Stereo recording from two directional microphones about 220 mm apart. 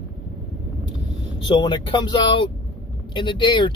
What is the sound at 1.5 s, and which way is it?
Speech, 20° left (ahead or behind).